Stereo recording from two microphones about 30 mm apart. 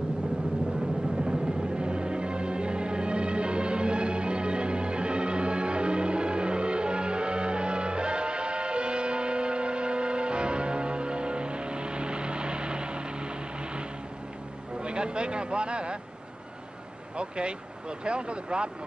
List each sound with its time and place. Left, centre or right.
1.2 s music: right
14.8 s a sound: right
17.2 s speech: right